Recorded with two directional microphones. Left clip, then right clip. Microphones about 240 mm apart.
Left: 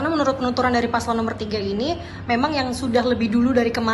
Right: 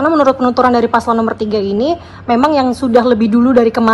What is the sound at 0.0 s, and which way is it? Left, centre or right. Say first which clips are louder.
A man's voice: right 10 dB; centre.